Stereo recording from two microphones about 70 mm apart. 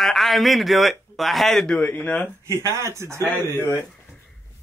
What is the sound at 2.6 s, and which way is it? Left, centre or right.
Speech, right.